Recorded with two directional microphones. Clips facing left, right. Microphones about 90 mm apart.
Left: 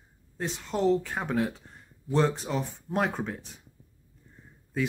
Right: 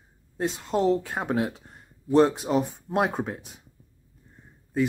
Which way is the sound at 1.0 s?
25° right (ahead or behind).